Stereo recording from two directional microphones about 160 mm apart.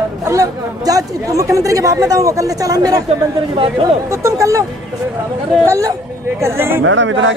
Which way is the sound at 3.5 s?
35° right (ahead or behind).